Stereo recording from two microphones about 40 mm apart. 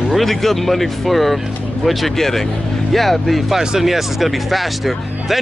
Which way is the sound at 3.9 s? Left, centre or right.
Centre.